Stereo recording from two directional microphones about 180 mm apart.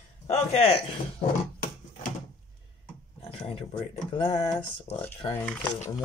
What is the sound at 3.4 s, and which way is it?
Speech, 30° left (ahead or behind).